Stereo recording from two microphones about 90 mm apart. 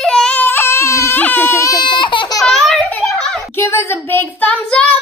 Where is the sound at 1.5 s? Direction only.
35° left (ahead or behind).